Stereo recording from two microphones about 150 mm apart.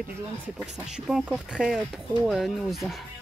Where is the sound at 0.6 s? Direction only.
5° right (ahead or behind).